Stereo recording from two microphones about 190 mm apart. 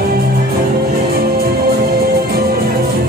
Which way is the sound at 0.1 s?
55° right (ahead or behind).